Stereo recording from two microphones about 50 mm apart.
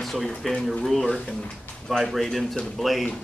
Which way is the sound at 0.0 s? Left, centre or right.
Centre.